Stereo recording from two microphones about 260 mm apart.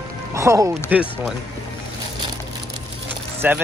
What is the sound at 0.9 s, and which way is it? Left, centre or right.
Speech, centre.